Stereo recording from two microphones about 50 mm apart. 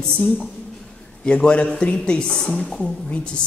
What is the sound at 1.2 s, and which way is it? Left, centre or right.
A man's voice, left.